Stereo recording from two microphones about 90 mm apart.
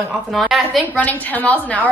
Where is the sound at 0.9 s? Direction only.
20° left (ahead or behind).